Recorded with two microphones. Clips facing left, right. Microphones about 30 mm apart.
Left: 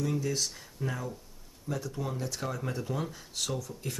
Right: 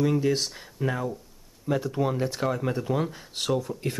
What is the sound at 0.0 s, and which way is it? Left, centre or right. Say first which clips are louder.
Speech: right 7 dB; right.